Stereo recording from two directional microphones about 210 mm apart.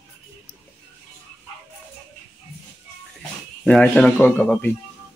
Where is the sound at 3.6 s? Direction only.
5° left (ahead or behind).